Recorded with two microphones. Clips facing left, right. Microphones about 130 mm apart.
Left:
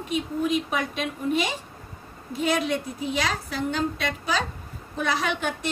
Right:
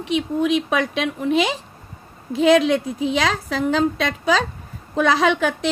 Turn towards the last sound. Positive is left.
turn(degrees=-90)